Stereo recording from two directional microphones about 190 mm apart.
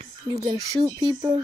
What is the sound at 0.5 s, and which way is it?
Speech, 20° right (ahead or behind).